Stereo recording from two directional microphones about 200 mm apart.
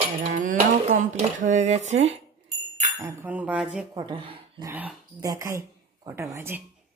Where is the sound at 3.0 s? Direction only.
10° right (ahead or behind).